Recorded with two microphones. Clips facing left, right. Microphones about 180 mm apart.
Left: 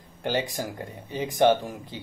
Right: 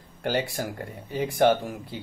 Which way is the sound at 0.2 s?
15° left (ahead or behind).